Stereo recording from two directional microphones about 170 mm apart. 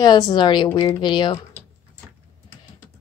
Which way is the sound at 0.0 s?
25° left (ahead or behind).